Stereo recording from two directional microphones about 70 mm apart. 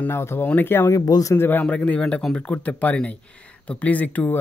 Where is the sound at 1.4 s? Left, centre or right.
Left.